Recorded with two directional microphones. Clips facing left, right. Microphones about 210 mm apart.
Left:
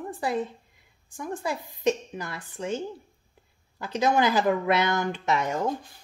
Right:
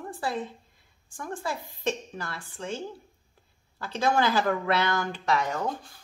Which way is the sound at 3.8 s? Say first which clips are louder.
Left 2 dB; 20° left (ahead or behind).